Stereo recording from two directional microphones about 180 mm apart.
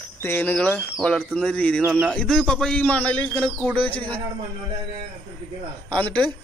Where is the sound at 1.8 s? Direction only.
5° right (ahead or behind).